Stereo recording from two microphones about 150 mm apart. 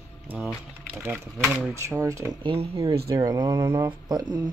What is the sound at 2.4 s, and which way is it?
Speech, 40° right (ahead or behind).